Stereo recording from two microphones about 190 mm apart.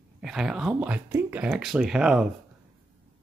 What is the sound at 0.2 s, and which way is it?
Speech, centre (ahead or behind).